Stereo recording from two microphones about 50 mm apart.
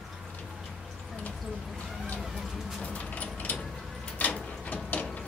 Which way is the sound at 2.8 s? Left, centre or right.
Left.